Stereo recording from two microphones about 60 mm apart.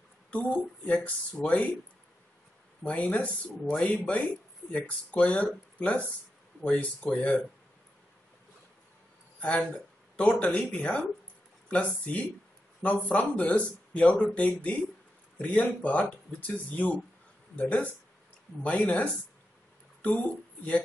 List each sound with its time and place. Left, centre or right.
0.3 s speech: left
2.8 s speech: left
9.4 s speech: centre